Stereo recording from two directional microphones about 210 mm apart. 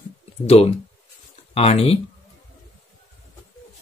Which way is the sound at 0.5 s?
30° left (ahead or behind).